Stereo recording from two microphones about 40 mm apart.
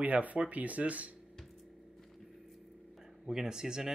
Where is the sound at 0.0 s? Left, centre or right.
Right.